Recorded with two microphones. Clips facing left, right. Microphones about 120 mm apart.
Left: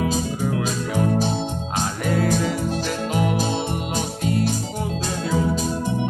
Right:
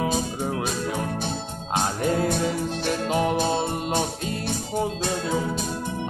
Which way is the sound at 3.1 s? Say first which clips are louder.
Even; 25° right (ahead or behind).